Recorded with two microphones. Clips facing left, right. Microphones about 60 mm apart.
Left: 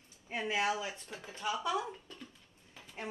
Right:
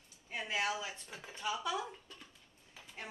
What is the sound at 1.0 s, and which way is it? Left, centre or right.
Speech, centre.